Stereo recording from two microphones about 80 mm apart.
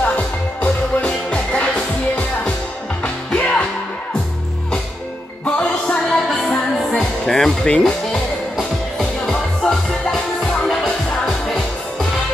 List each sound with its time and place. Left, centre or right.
0.0 s music: centre
5.4 s music: centre